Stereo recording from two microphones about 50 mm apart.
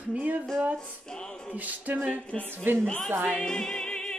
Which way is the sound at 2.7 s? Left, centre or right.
Right.